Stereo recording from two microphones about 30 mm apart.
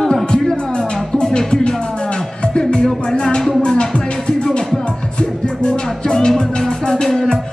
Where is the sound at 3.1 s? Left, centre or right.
Left.